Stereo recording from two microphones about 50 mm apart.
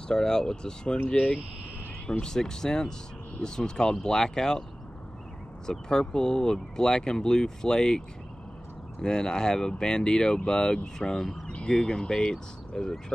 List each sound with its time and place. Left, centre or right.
0.1 s speech: centre
1.1 s speech: left
2.0 s speech: centre
5.7 s speech: centre
9.0 s speech: centre